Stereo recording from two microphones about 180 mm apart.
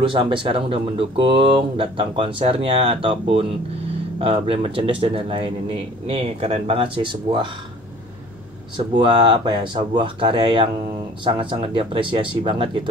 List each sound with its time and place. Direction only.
0.0 s speech: 30° right (ahead or behind)
8.7 s speech: 25° right (ahead or behind)